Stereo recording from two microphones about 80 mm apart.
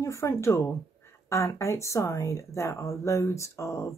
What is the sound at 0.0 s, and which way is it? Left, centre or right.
Speech, left.